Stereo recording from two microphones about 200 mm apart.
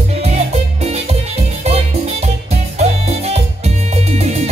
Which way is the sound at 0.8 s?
30° right (ahead or behind).